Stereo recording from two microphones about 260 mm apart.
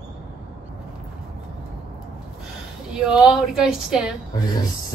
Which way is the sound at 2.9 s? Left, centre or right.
Centre.